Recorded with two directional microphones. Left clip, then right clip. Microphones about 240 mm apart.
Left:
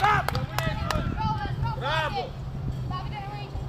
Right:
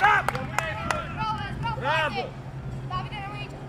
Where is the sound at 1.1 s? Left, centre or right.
Right.